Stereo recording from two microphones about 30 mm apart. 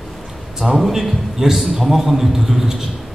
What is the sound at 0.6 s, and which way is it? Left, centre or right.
A man's voice, centre.